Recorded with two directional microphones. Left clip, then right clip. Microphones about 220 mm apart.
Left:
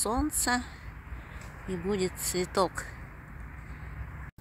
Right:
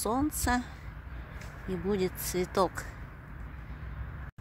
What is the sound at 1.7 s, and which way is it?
Speech, 5° right (ahead or behind).